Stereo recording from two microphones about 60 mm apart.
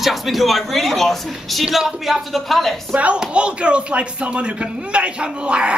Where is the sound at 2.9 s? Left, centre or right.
Right.